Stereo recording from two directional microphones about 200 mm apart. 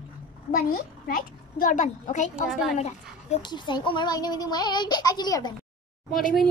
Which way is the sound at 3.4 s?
20° left (ahead or behind).